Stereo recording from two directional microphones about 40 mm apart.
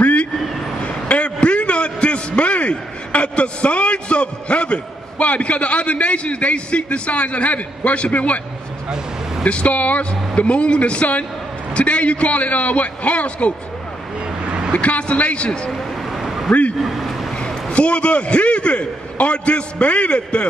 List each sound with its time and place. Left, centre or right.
0.0 s vehicle: left
0.8 s a sound: left
5.2 s a man's voice: left
9.4 s a man's voice: left
14.7 s a man's voice: left
16.1 s vehicle: centre
16.7 s a sound: centre
17.6 s a man's voice: left